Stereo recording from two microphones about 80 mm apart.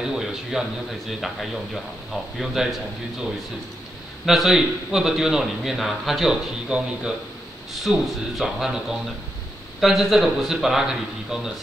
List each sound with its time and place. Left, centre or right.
0.0 s a man's voice: centre
4.3 s a man's voice: centre